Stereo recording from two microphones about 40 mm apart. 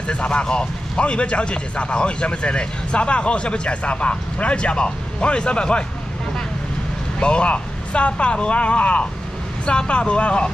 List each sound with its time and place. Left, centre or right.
0.1 s a man's voice: left
7.2 s a man's voice: left